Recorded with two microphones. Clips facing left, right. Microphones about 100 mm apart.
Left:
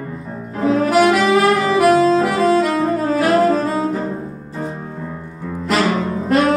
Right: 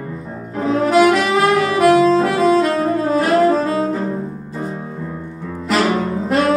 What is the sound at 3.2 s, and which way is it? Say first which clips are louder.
Saxophone: even; centre (ahead or behind).